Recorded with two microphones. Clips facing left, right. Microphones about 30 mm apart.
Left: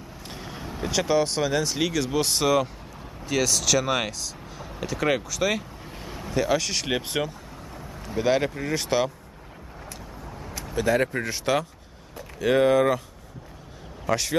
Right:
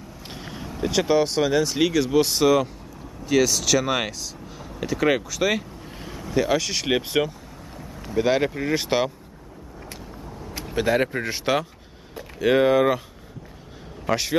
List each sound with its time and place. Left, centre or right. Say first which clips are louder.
0.3 s vehicle: right 2 dB; centre
0.8 s speech: right 3 dB; centre
10.5 s vehicle: right 1 dB; right
11.2 s speech: right 1 dB; centre
14.0 s a man's voice: right 1 dB; centre